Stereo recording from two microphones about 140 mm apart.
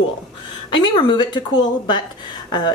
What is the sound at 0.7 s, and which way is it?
Speech, 35° left (ahead or behind).